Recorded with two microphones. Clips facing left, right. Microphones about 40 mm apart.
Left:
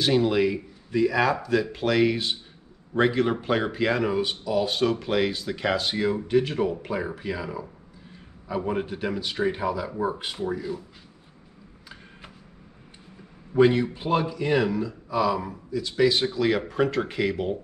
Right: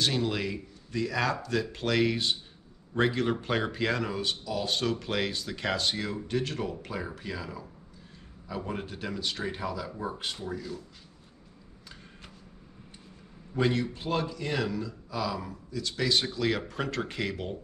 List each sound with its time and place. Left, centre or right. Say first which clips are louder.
0.0 s speech: left 8 dB; centre
13.6 s speech: left 8 dB; centre